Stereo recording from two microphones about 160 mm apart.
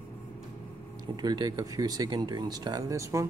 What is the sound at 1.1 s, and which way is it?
Speech, 25° right (ahead or behind).